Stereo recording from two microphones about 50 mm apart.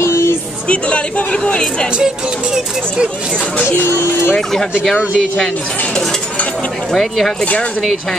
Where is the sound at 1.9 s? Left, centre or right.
Centre.